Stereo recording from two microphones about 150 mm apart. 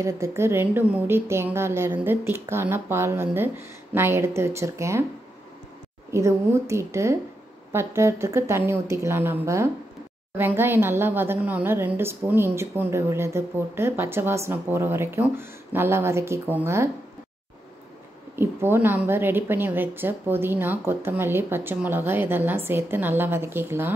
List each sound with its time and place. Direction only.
0.0 s a woman's voice: 20° right (ahead or behind)
6.1 s a woman's voice: 20° right (ahead or behind)
18.3 s a woman's voice: 15° right (ahead or behind)